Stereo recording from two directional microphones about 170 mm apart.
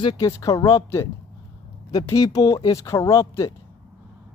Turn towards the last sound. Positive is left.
turn(degrees=20)  # may be behind; listen again after turning